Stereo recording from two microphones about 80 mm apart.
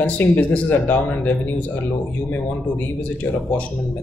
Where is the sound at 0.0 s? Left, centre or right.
Left.